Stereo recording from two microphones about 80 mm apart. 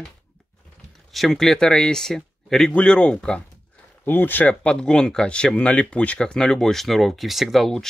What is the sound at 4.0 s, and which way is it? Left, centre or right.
Speech, left.